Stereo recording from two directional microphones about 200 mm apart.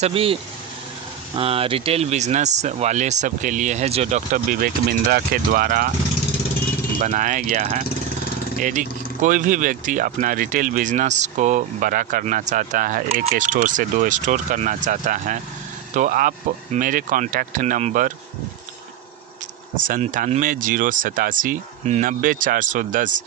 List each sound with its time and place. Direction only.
0.0 s speech: 30° right (ahead or behind)
7.0 s speech: 40° right (ahead or behind)
19.9 s speech: 40° right (ahead or behind)